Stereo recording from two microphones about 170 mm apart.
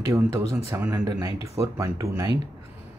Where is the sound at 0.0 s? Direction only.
20° right (ahead or behind).